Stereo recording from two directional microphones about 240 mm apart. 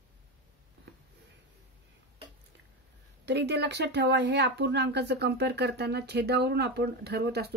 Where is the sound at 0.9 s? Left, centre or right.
Right.